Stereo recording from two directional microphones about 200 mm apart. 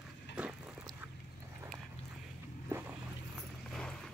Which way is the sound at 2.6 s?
10° right (ahead or behind).